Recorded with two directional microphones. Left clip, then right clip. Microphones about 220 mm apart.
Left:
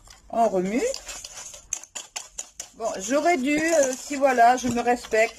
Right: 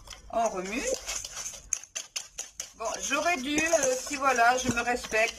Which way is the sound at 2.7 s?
25° left (ahead or behind).